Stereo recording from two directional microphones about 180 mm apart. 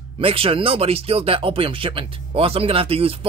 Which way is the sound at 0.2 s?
30° right (ahead or behind).